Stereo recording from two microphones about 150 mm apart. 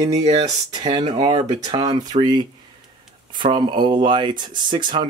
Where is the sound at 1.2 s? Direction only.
25° right (ahead or behind).